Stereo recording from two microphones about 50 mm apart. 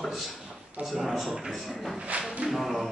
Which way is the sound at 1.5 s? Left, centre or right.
Centre.